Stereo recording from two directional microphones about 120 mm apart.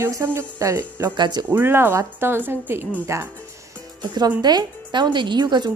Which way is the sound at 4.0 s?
35° right (ahead or behind).